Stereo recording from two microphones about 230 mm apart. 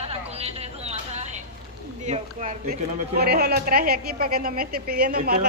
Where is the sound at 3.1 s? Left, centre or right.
Right.